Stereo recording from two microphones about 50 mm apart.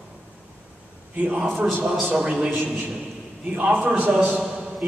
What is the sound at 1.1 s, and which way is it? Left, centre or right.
Speech, right.